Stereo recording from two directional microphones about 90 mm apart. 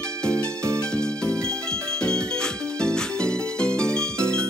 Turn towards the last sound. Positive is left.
turn(degrees=10)  # may be behind; listen again after turning